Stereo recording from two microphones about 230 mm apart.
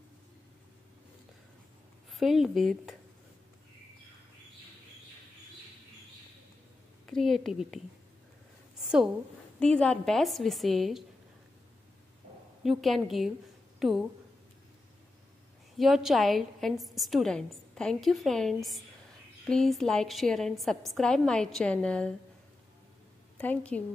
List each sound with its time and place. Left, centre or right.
2.0 s speech: centre
7.1 s a woman's voice: centre
9.6 s a woman's voice: centre
12.6 s a woman's voice: centre
15.8 s a woman's voice: centre
23.3 s a woman's voice: centre